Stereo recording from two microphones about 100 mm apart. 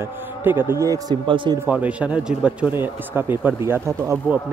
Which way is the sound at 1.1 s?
55° right (ahead or behind).